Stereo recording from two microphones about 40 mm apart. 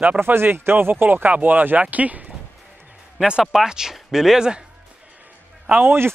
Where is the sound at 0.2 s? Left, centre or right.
Right.